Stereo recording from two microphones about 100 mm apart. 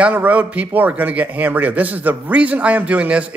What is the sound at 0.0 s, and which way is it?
Speech, 15° right (ahead or behind).